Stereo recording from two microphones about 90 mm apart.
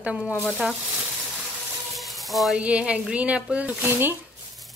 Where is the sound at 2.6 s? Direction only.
15° right (ahead or behind).